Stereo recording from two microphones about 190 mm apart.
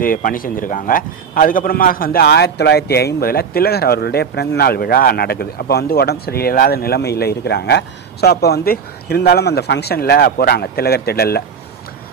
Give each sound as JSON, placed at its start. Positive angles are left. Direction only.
{"t": 0.0, "sound": "a man's voice", "side_deg": 45}